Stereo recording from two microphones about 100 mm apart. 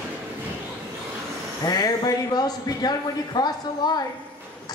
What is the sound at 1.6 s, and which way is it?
A woman's voice, 40° left (ahead or behind).